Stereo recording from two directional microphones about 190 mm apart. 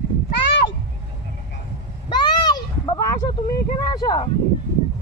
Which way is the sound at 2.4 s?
20° left (ahead or behind).